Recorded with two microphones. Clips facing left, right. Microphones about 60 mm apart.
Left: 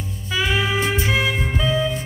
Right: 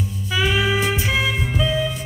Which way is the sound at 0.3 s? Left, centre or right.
Centre.